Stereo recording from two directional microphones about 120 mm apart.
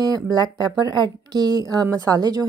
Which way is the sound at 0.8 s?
35° right (ahead or behind).